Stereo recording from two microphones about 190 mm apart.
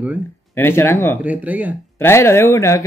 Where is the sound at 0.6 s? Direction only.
10° left (ahead or behind).